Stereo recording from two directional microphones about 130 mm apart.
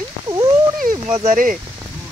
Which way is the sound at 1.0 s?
60° right (ahead or behind).